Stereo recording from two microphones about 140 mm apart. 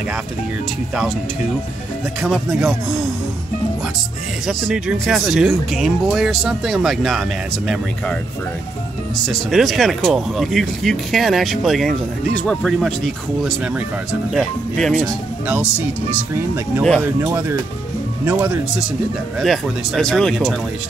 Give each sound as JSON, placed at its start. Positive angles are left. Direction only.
{"t": 2.2, "sound": "speech", "side_deg": 0}
{"t": 4.5, "sound": "speech", "side_deg": -5}
{"t": 15.4, "sound": "speech", "side_deg": -10}
{"t": 17.2, "sound": "speech", "side_deg": -20}
{"t": 19.3, "sound": "speech", "side_deg": 0}